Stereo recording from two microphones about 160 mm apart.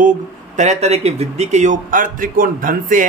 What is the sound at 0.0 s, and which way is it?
Speech, 50° right (ahead or behind).